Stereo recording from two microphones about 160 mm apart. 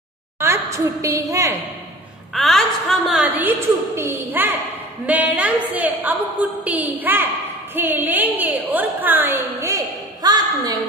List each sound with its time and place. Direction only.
0.4 s a woman's voice: 15° right (ahead or behind)
2.3 s a woman's voice: centre (ahead or behind)
3.3 s a woman's voice: 15° right (ahead or behind)
10.2 s a sound: 25° right (ahead or behind)